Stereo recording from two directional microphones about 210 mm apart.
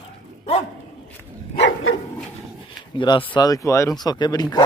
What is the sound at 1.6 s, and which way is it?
Dog, 65° left (ahead or behind).